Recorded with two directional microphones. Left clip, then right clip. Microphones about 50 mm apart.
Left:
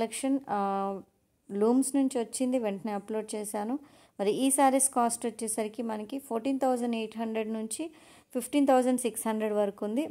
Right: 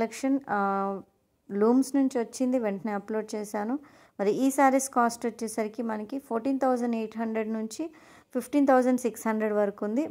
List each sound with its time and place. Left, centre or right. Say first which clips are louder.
0.0 s a woman's voice: right 2 dB; right
2.0 s a woman's voice: right 2 dB; right
7.6 s a woman's voice: right 2 dB; right
8.3 s a woman's voice: right 2 dB; right